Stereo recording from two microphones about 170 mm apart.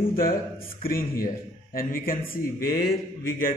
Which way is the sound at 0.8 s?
60° left (ahead or behind).